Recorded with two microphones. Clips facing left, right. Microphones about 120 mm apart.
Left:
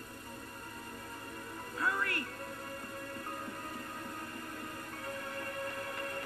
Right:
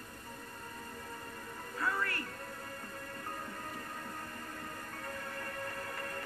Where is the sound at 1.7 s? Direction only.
35° right (ahead or behind).